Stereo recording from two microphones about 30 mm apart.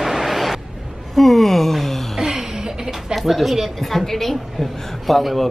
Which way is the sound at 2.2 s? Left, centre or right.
Centre.